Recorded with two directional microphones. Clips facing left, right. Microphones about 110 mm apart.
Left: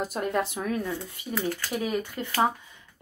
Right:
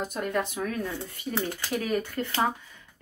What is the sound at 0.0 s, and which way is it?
Speech, 35° left (ahead or behind).